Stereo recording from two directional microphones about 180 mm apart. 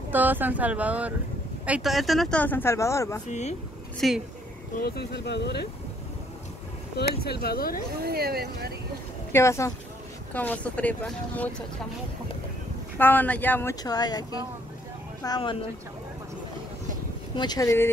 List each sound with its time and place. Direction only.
0.1 s speech: 10° right (ahead or behind); by 3.2 s 15° left (ahead or behind)
3.3 s speech: 40° left (ahead or behind)
4.0 s speech: centre (ahead or behind)
4.7 s speech: 60° left (ahead or behind)
7.2 s speech: 60° left (ahead or behind)
8.0 s speech: 60° right (ahead or behind)
9.3 s speech: 15° left (ahead or behind)
12.9 s speech: 10° left (ahead or behind)
17.4 s speech: 20° left (ahead or behind)